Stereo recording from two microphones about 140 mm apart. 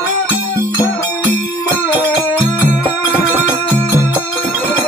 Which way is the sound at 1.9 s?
30° left (ahead or behind).